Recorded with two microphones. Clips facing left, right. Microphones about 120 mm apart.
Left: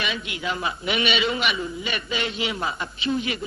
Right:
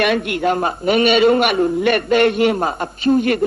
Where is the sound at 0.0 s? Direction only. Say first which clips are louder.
Right 13 dB; 60° right (ahead or behind).